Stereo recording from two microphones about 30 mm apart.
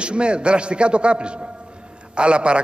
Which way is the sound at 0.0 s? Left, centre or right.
Right.